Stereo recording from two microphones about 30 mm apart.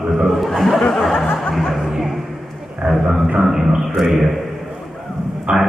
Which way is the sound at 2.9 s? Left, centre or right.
Centre.